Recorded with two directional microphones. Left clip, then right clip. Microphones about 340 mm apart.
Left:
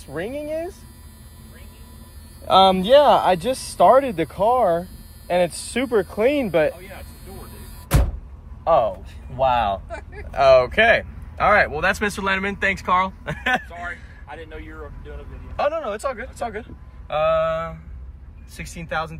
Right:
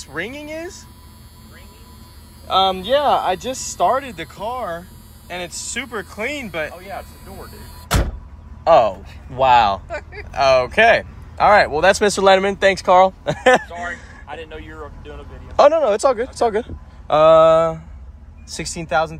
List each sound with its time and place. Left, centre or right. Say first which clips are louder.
0.0 s speech: right 1 dB; centre
2.4 s speech: left 2 dB; centre
8.6 s speech: right 5 dB; centre
9.8 s a sound: right 6 dB; right
10.3 s speech: even; centre
13.7 s vehicle: right 4 dB; right
17.1 s speech: right 9 dB; centre